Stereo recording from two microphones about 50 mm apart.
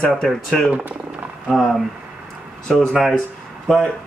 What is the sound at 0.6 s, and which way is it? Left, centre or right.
Speech, right.